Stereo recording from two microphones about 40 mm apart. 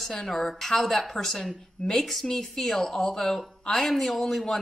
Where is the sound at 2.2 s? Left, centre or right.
Centre.